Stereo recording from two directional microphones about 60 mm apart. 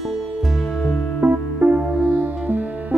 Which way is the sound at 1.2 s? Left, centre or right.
Right.